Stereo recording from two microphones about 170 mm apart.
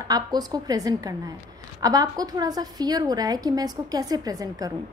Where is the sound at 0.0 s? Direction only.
25° right (ahead or behind).